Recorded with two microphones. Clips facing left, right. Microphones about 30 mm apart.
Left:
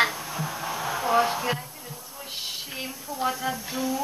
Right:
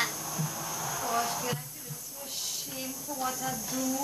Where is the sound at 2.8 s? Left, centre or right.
Left.